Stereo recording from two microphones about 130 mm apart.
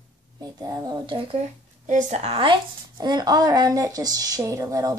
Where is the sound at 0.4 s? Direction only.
25° right (ahead or behind).